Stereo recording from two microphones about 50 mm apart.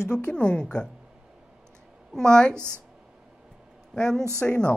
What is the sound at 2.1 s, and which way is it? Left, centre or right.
Speech, centre.